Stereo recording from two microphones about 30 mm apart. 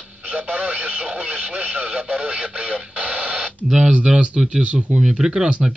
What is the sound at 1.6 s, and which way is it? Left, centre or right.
Speech, right.